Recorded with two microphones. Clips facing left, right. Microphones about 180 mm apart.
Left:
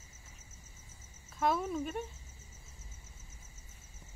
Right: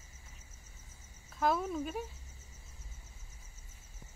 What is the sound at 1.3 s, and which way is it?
Speech, centre (ahead or behind).